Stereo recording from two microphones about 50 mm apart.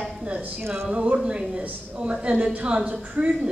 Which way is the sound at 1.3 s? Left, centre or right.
Centre.